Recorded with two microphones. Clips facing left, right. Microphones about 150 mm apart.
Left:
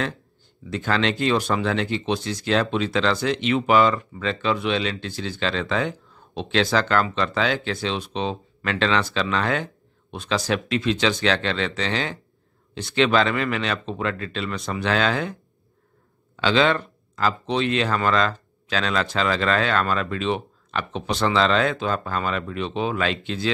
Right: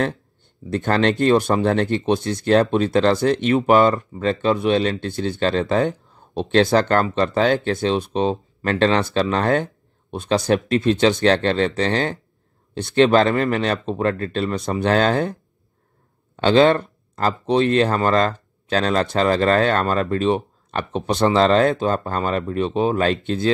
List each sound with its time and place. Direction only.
0.7 s speech: 55° right (ahead or behind)
14.4 s speech: 30° right (ahead or behind)
14.8 s speech: 45° right (ahead or behind)
16.3 s speech: 50° right (ahead or behind)